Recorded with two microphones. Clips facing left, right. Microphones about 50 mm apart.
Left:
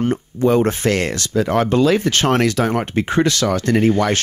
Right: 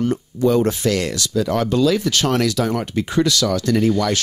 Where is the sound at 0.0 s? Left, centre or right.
Left.